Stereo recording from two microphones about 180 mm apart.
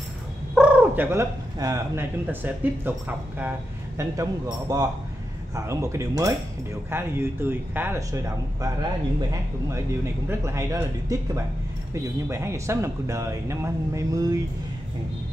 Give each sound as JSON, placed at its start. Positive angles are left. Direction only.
{"t": 0.6, "sound": "speech", "side_deg": -10}
{"t": 10.2, "sound": "speech", "side_deg": -15}